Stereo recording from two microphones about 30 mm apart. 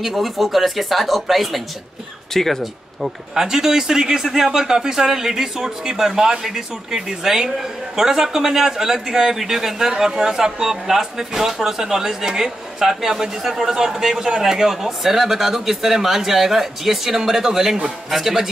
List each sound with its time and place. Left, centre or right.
0.0 s speech: centre
2.3 s speech: centre
3.3 s a man's voice: centre